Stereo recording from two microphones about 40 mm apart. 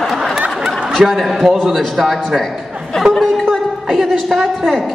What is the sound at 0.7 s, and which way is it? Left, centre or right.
A woman's voice, centre.